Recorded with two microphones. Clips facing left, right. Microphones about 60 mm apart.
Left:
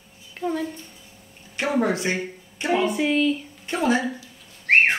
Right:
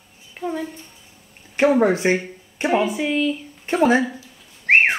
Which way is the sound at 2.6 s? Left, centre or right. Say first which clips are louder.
Right 3 dB; centre.